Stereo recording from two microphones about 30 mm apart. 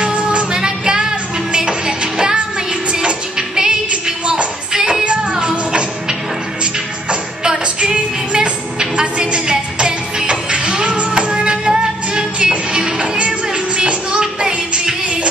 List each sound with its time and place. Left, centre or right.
0.2 s music: right
0.5 s music: right
2.9 s music: right
3.3 s music: right
3.9 s music: right
4.7 s music: centre
7.8 s music: right